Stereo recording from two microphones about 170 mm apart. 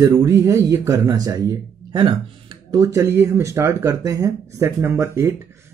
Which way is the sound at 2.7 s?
20° right (ahead or behind).